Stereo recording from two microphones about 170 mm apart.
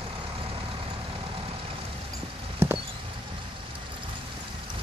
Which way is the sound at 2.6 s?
15° right (ahead or behind).